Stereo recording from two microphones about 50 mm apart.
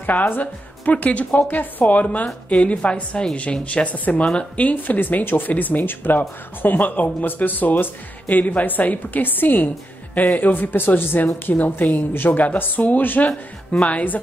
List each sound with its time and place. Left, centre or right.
0.0 s a woman's voice: left